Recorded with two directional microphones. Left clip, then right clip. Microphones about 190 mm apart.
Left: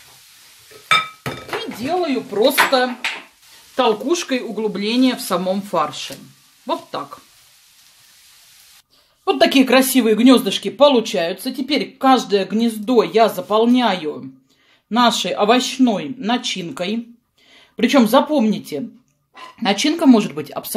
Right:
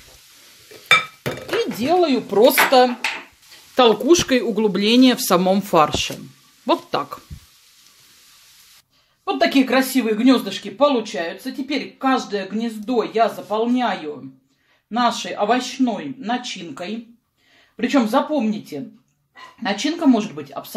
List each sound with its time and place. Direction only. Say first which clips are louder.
2.0 s speech: right 3 dB; 35° right (ahead or behind)
9.2 s speech: left 3 dB; 40° left (ahead or behind)